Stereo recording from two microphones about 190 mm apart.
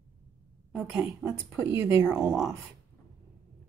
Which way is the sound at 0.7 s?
5° right (ahead or behind).